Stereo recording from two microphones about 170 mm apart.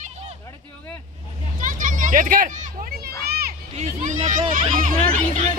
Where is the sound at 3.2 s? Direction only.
65° right (ahead or behind).